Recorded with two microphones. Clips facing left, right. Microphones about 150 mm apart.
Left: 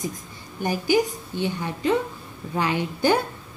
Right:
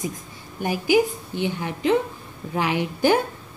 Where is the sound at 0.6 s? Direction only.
10° right (ahead or behind).